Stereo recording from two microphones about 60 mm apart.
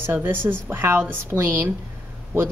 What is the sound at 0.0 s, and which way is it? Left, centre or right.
Speech, right.